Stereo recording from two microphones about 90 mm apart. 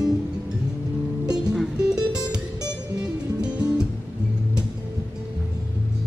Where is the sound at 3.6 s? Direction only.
10° right (ahead or behind).